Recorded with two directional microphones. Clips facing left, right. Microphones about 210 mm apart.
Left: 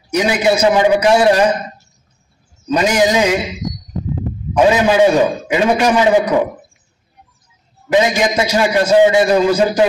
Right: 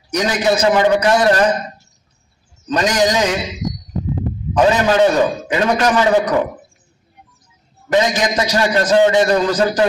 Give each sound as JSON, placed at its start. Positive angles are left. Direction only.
{"t": 0.1, "sound": "a man's voice", "side_deg": 10}
{"t": 2.7, "sound": "a man's voice", "side_deg": 10}
{"t": 4.6, "sound": "a man's voice", "side_deg": 10}
{"t": 7.9, "sound": "a man's voice", "side_deg": 10}